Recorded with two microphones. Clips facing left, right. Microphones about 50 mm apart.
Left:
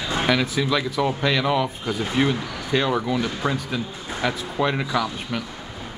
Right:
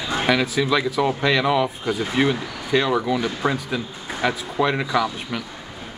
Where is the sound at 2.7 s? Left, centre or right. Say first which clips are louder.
Right 2 dB; centre.